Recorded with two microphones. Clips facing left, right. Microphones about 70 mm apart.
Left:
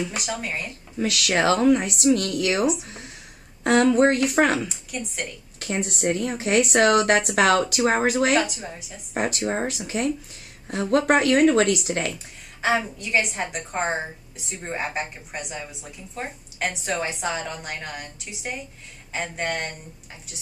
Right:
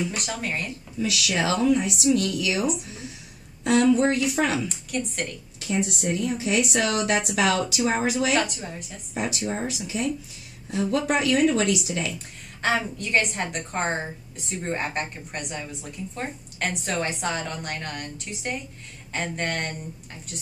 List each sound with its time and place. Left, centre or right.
0.2 s a woman's voice: centre
0.9 s a woman's voice: left
4.6 s a woman's voice: centre
5.6 s a woman's voice: left
8.4 s a woman's voice: centre
9.1 s a woman's voice: left
12.6 s a woman's voice: centre